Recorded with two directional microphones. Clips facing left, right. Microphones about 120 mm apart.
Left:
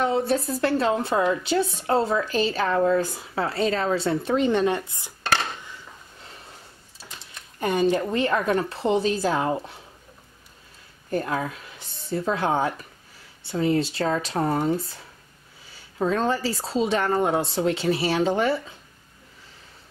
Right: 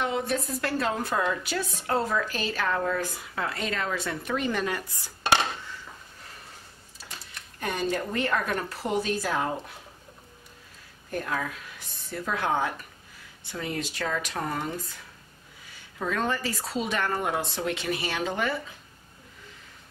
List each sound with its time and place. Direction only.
0.0 s a woman's voice: 35° left (ahead or behind)
7.6 s a woman's voice: 25° left (ahead or behind)
11.1 s a woman's voice: 35° left (ahead or behind)